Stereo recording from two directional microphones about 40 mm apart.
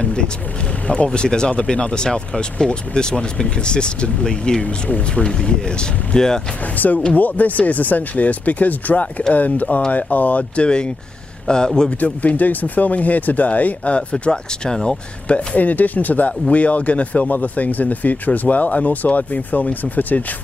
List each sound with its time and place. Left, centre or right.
0.0 s speech: left
4.8 s speech: left
5.2 s speech: left
6.8 s speech: left; by 11.9 s centre
12.0 s speech: left
14.1 s speech: centre
15.2 s speech: left